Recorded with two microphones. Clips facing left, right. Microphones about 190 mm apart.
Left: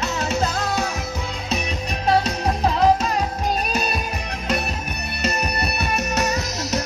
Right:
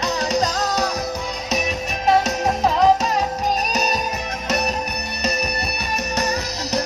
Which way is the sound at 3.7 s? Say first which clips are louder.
Right 2 dB; 45° right (ahead or behind).